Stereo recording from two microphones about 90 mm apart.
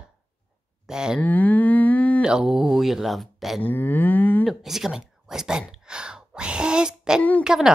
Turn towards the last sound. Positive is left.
turn(degrees=-5)  # may be behind; listen again after turning